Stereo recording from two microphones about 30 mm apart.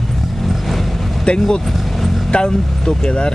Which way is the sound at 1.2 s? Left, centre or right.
Left.